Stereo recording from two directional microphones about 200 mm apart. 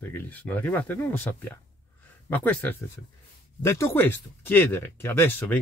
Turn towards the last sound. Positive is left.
turn(degrees=10)  # may be behind; listen again after turning